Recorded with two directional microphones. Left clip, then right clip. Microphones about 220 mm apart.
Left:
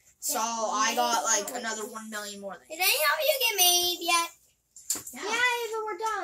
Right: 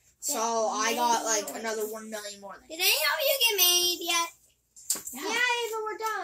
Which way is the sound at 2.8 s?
10° left (ahead or behind).